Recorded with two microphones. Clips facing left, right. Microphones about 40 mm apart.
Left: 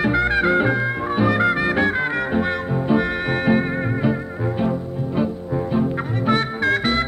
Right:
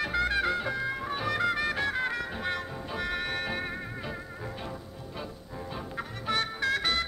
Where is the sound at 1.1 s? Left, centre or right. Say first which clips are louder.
Left 11 dB; left.